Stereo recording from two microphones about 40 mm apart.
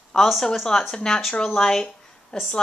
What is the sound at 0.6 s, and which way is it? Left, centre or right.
Speech, centre.